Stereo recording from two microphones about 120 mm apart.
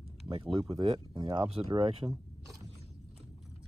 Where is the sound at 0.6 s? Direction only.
45° right (ahead or behind).